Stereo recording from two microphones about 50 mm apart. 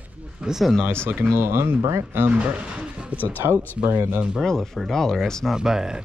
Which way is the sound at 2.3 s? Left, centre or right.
Right.